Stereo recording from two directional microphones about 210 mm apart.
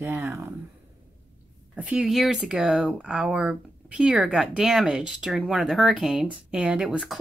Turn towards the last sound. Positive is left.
turn(degrees=-5)  # may be behind; listen again after turning